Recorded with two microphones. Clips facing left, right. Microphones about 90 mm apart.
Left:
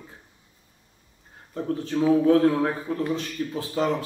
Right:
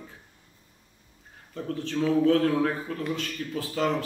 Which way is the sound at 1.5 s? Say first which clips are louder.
Left 4 dB; 25° left (ahead or behind).